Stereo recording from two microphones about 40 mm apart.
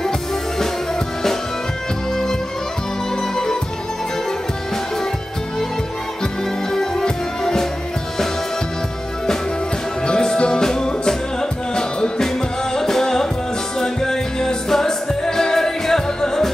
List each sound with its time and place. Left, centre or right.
6.7 s music: centre
10.0 s music: left